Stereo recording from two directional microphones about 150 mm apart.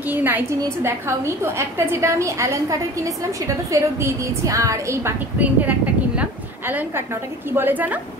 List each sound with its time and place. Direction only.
0.1 s a woman's voice: 10° right (ahead or behind)
7.5 s a woman's voice: 15° right (ahead or behind)